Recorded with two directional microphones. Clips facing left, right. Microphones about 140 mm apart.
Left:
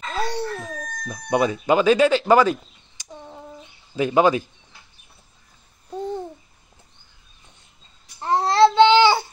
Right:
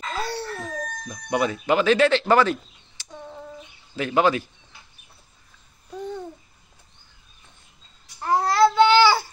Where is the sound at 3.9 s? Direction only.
15° left (ahead or behind).